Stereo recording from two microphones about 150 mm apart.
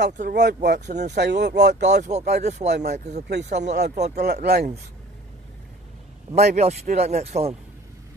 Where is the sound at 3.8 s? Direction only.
90° right.